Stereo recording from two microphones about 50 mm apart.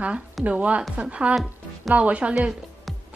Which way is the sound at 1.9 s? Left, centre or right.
Right.